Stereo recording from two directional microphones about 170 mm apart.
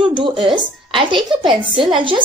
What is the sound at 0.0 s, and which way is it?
A woman's voice, 30° right (ahead or behind).